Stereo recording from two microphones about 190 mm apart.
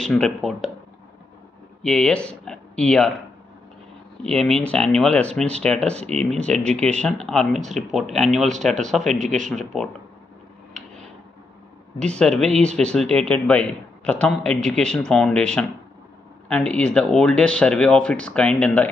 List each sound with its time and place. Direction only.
0.0 s a man's voice: 5° left (ahead or behind)
1.8 s speech: 5° left (ahead or behind)
4.2 s a man's voice: 5° left (ahead or behind)
9.2 s speech: 40° right (ahead or behind)
9.7 s a man's voice: centre (ahead or behind)
12.2 s a man's voice: 5° left (ahead or behind)